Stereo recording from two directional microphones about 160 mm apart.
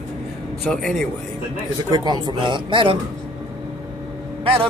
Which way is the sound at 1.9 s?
25° right (ahead or behind).